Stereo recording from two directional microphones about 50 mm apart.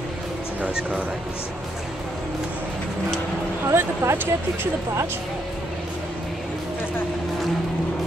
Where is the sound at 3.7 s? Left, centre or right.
Right.